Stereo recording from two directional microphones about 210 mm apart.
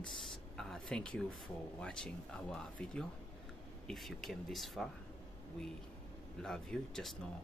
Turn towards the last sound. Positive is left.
turn(degrees=0)  # may be behind; listen again after turning